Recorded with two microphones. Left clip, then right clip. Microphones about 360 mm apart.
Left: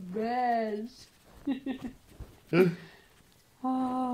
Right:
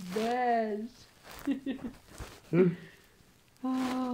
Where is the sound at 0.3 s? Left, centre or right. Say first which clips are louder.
Even; centre.